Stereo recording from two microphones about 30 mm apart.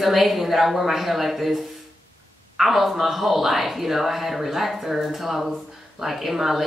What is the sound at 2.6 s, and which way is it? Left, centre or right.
Speech, centre.